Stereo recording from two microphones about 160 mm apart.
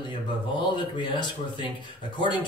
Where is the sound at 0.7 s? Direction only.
30° left (ahead or behind).